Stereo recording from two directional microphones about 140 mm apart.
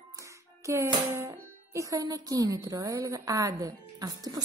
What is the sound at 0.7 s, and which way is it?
A woman's voice, 20° right (ahead or behind).